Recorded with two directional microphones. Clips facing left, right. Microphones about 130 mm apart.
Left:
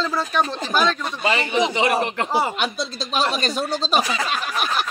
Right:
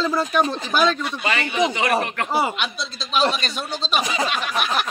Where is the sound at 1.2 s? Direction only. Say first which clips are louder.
Left 2 dB; 25° left (ahead or behind).